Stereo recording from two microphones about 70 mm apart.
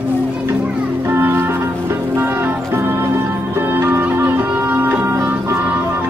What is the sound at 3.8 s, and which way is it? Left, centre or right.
Music, right.